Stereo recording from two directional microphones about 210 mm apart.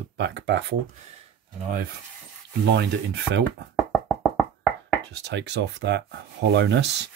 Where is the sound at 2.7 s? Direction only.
55° right (ahead or behind).